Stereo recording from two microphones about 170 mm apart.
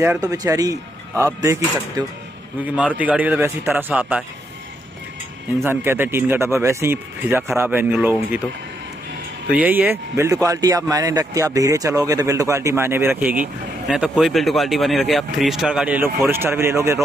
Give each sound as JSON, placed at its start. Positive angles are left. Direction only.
{"t": 0.0, "sound": "speech", "side_deg": -20}
{"t": 2.6, "sound": "speech", "side_deg": -5}
{"t": 5.6, "sound": "speech", "side_deg": -15}
{"t": 9.5, "sound": "speech", "side_deg": -10}